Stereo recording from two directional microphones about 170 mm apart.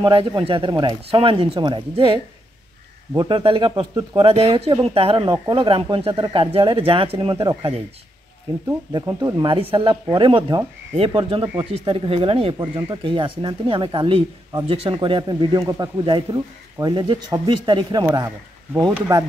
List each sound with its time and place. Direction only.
0.0 s speech: 30° right (ahead or behind)
3.2 s speech: 25° right (ahead or behind)